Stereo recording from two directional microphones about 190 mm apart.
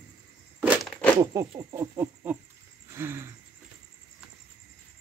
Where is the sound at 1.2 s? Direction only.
20° right (ahead or behind).